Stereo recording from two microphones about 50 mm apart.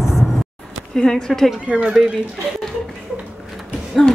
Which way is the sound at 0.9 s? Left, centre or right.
Centre.